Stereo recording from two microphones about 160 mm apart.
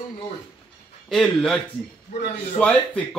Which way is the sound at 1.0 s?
5° left (ahead or behind).